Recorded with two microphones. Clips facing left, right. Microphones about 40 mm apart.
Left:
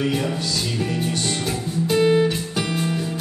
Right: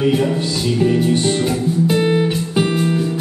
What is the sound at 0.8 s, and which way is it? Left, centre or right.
Music, right.